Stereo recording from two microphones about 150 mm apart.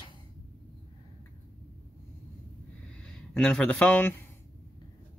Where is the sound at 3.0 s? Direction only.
5° left (ahead or behind).